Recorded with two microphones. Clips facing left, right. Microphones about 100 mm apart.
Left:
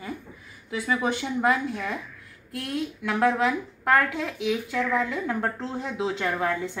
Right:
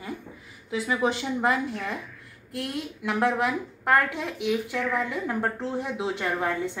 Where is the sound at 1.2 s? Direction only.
15° right (ahead or behind).